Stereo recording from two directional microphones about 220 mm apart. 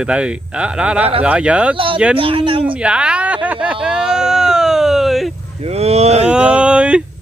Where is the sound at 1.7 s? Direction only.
25° right (ahead or behind).